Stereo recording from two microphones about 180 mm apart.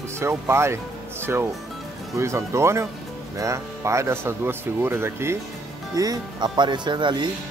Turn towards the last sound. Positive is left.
turn(degrees=-25)  # may be behind; listen again after turning